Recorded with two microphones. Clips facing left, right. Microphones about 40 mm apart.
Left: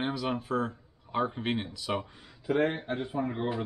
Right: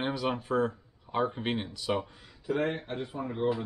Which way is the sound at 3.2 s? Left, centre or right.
Centre.